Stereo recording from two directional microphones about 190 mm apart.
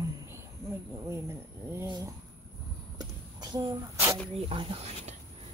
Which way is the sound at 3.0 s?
20° right (ahead or behind).